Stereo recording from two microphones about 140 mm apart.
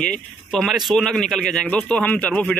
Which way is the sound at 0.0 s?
5° left (ahead or behind).